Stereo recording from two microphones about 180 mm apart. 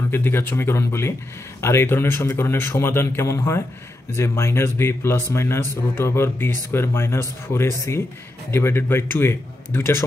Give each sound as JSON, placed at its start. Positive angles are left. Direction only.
{"t": 0.1, "sound": "speech", "side_deg": 15}